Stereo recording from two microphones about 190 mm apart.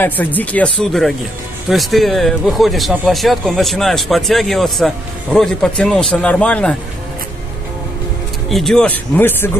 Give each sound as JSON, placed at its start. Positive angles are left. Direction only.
{"t": 0.0, "sound": "speech", "side_deg": 10}
{"t": 8.5, "sound": "speech", "side_deg": 0}